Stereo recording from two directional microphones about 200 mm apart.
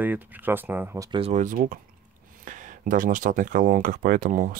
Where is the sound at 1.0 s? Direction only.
30° right (ahead or behind).